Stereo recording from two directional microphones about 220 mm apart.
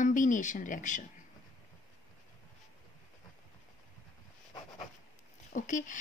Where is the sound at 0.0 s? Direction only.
35° left (ahead or behind).